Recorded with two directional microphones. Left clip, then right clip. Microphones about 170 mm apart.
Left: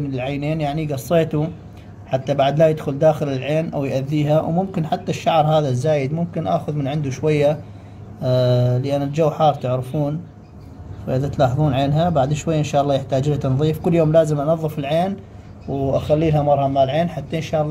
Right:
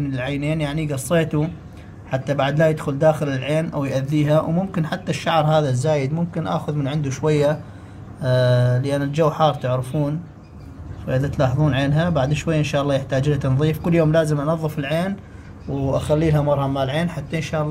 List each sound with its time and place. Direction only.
0.1 s a man's voice: 10° right (ahead or behind)
11.1 s a man's voice: 5° right (ahead or behind)